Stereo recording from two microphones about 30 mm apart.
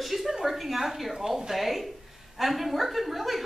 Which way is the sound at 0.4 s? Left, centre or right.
Centre.